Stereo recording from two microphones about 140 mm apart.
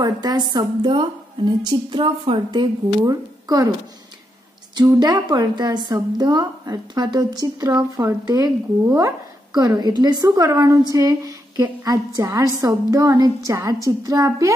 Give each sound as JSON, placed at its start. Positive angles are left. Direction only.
{"t": 0.0, "sound": "a woman's voice", "side_deg": -30}
{"t": 4.7, "sound": "a woman's voice", "side_deg": -30}